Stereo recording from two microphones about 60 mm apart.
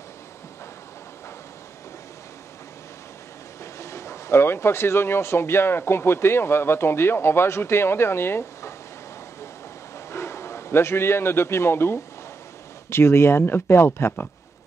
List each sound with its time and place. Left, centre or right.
3.8 s speech: left
9.9 s a man's voice: left